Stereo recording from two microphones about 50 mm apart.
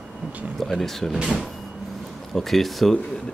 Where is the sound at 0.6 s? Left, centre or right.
Centre.